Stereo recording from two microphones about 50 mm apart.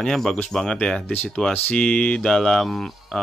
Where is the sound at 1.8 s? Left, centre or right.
Centre.